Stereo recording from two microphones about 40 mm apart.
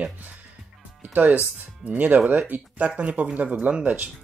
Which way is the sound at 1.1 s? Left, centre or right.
Right.